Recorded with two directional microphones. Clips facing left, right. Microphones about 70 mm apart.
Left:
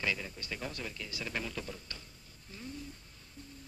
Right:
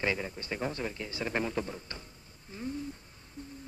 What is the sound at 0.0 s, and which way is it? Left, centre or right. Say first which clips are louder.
Speech: right 4 dB; right.